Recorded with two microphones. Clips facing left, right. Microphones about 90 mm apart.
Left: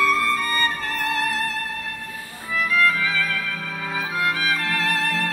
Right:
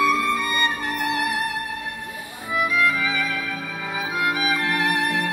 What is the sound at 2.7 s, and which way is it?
Music, 15° right (ahead or behind).